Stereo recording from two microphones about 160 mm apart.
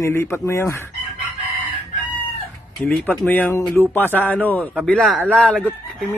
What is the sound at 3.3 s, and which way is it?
A man's voice, 15° left (ahead or behind).